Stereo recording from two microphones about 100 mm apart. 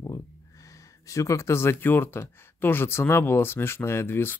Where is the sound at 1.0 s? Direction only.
30° left (ahead or behind).